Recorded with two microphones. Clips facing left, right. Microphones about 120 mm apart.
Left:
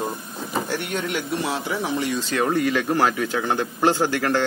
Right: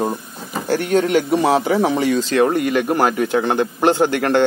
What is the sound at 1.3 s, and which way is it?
A man's voice, 85° right.